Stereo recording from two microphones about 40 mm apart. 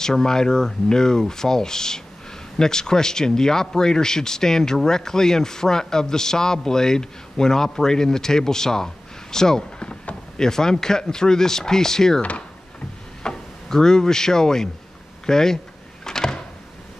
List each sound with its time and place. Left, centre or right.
0.0 s speech: centre
9.8 s a sound: left
10.4 s speech: centre
12.2 s speech: left
13.2 s speech: centre
15.2 s a sound: centre